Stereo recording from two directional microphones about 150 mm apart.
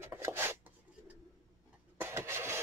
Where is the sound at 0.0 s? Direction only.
15° right (ahead or behind).